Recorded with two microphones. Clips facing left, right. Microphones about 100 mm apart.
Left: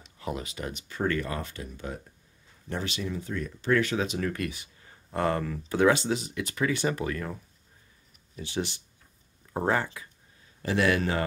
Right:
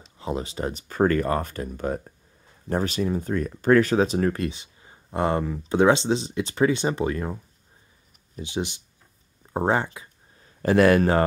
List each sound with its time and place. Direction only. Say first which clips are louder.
0.2 s speech: right 6 dB; 30° right (ahead or behind)
8.4 s speech: right 3 dB; 20° right (ahead or behind)
10.6 s speech: right 8 dB; 50° right (ahead or behind)